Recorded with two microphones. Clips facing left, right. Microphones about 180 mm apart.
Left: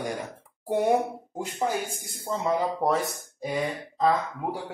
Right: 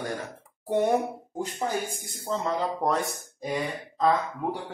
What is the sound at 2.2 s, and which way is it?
Speech, 10° left (ahead or behind).